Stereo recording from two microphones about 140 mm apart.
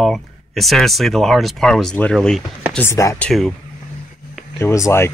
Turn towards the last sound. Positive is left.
turn(degrees=20)  # may be behind; listen again after turning